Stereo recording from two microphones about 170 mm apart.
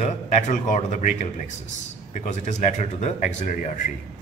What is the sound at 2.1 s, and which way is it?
A man's voice, 45° left (ahead or behind).